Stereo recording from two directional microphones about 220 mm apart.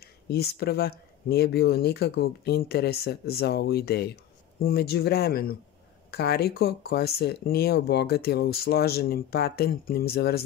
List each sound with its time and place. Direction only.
0.0 s speech: 45° left (ahead or behind)